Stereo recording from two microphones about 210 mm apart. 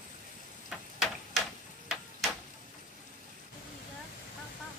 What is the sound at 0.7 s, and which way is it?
Tick-tock, centre (ahead or behind).